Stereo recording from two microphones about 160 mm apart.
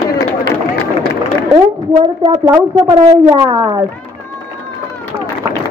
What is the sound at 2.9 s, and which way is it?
Speech, 30° right (ahead or behind).